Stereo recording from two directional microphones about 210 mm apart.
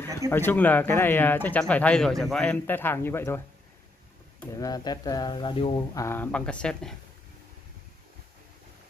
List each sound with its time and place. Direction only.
0.3 s speech: 10° left (ahead or behind)
4.6 s speech: 15° left (ahead or behind)